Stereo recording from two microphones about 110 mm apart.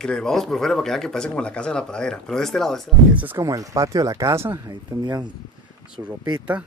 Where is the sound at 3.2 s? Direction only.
15° right (ahead or behind).